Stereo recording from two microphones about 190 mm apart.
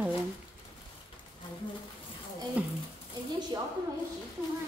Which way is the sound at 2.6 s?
5° right (ahead or behind).